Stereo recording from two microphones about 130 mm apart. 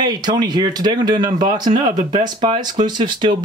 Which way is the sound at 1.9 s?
75° right (ahead or behind).